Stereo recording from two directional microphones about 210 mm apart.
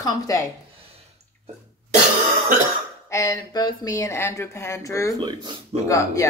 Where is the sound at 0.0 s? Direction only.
15° left (ahead or behind).